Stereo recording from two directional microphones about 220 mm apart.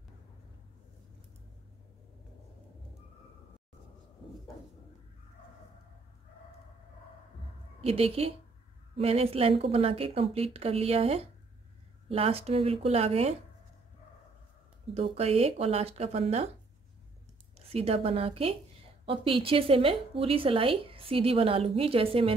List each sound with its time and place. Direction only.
7.8 s a woman's voice: 25° right (ahead or behind)
15.0 s a woman's voice: 25° right (ahead or behind)
17.6 s a woman's voice: 25° right (ahead or behind)